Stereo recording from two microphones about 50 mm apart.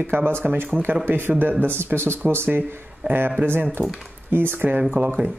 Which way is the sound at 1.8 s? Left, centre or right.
Right.